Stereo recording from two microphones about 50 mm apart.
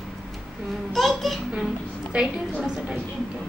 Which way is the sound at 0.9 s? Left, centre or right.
Centre.